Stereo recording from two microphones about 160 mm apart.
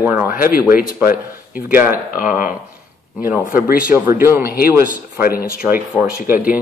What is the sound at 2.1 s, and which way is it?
Speech, 55° left (ahead or behind).